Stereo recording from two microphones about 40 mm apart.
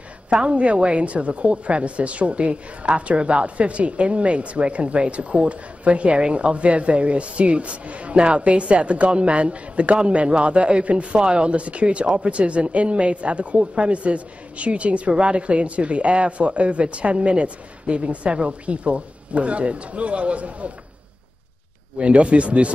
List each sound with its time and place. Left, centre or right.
0.3 s a man's voice: right
21.9 s a man's voice: right